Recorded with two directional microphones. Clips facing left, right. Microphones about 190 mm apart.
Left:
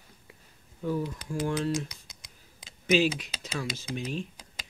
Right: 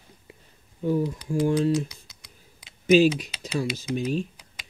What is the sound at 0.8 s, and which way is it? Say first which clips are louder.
Speech: right 6 dB; 20° right (ahead or behind).